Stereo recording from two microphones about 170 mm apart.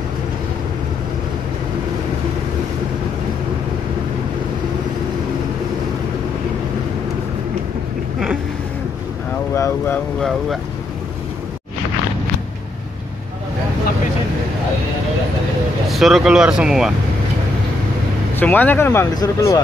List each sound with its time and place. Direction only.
9.5 s vehicle: 15° left (ahead or behind)
15.9 s speech: centre (ahead or behind)
18.3 s speech: 10° left (ahead or behind)